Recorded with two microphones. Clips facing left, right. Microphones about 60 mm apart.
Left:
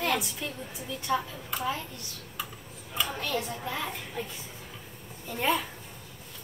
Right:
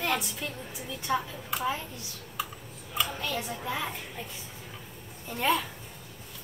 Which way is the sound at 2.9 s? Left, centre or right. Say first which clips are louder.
Left 1 dB; centre.